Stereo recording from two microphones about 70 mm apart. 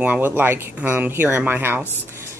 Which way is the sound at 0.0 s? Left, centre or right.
Right.